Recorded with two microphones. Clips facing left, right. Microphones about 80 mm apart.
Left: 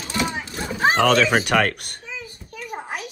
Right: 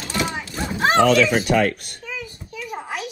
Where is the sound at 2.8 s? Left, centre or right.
Left.